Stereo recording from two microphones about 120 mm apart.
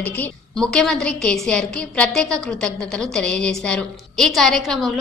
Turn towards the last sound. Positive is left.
turn(degrees=0)  # may be behind; listen again after turning